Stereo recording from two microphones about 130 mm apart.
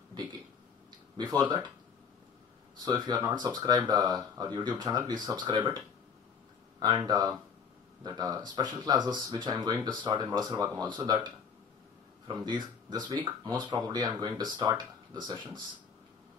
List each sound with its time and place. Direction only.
1.1 s speech: 30° right (ahead or behind)
2.8 s speech: 30° right (ahead or behind)
6.8 s speech: 30° right (ahead or behind)
12.4 s speech: 35° right (ahead or behind)